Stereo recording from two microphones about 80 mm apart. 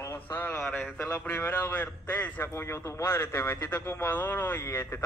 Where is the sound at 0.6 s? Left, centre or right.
Centre.